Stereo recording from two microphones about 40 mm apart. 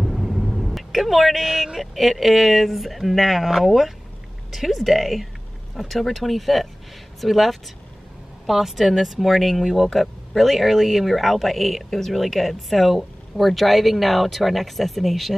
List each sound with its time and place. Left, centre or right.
0.0 s speech: centre